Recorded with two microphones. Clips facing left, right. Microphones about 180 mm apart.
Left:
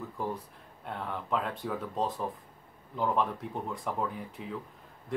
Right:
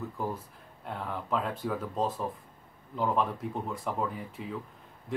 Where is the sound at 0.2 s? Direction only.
Centre (ahead or behind).